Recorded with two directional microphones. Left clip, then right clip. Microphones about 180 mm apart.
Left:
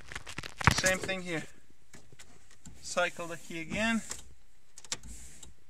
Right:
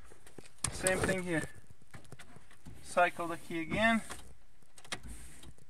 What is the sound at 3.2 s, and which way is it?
Speech, 45° left (ahead or behind).